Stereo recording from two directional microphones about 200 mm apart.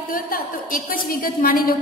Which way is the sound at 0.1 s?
45° left (ahead or behind).